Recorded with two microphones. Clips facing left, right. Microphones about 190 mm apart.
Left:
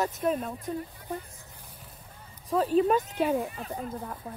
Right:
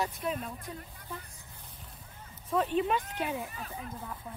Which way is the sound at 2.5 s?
40° left (ahead or behind).